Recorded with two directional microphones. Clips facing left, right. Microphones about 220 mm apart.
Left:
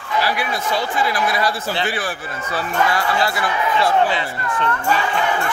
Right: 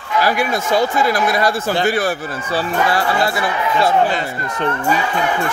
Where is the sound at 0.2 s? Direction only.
45° right (ahead or behind).